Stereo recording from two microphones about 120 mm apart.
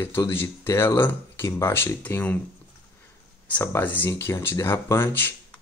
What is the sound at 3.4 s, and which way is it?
Speech, 15° left (ahead or behind).